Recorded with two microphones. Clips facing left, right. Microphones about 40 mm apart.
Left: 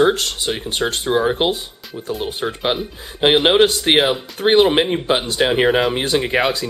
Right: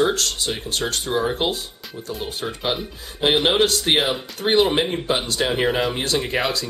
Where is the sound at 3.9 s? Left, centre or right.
Centre.